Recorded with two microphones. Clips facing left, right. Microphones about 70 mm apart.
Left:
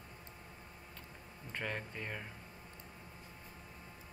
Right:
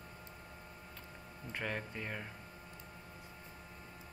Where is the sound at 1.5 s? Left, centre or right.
Centre.